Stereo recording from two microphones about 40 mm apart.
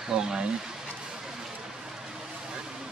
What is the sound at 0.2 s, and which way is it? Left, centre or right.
Speech, centre.